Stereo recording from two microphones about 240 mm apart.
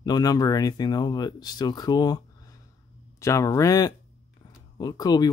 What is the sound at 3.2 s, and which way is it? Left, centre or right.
Speech, centre.